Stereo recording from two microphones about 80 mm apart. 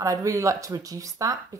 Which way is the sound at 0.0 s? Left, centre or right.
Right.